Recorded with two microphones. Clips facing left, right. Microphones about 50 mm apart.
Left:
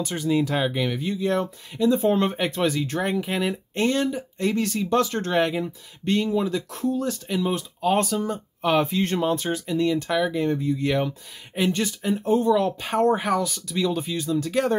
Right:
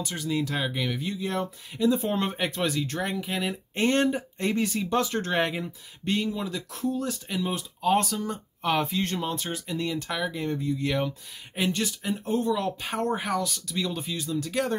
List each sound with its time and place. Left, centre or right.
0.0 s speech: centre
3.9 s speech: right
4.4 s speech: centre
4.7 s speech: centre
7.4 s speech: centre